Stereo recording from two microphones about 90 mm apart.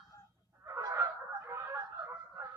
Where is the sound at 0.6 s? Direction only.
35° right (ahead or behind).